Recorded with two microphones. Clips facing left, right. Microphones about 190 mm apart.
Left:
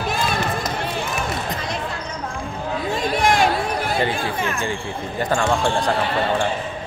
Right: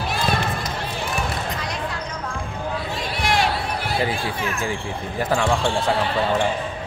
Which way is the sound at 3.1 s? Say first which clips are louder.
Left 4 dB; 50° left (ahead or behind).